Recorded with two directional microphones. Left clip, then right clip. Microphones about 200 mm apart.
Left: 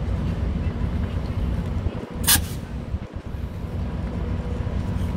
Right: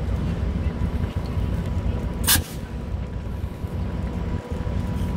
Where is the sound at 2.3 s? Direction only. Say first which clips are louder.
Left 1 dB; 40° left (ahead or behind).